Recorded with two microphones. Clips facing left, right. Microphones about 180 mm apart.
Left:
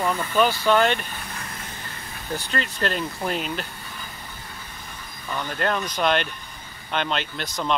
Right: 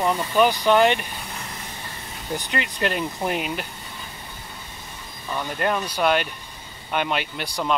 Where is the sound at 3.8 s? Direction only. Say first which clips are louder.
Even; 25° right (ahead or behind).